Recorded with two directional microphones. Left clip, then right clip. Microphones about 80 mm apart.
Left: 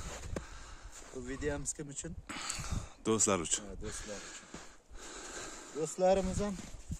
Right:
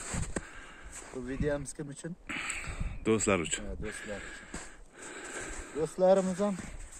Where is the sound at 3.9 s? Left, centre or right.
Left.